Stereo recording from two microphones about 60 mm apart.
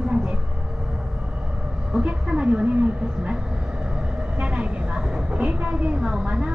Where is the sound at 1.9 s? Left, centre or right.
Centre.